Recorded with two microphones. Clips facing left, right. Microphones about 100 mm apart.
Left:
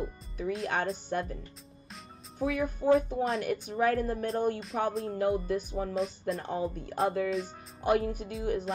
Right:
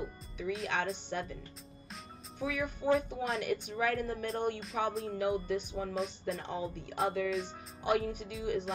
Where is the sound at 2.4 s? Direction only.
40° left (ahead or behind).